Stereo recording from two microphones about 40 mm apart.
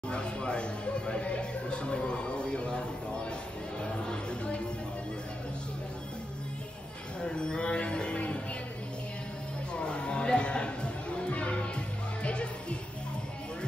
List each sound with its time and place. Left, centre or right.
0.1 s music: left
3.8 s chatter: left
7.2 s speech: left
9.8 s music: left